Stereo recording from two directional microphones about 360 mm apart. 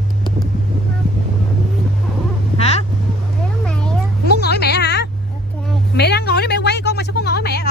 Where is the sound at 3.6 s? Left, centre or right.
Centre.